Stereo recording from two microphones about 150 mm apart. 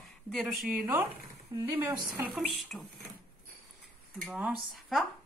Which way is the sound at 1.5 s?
25° right (ahead or behind).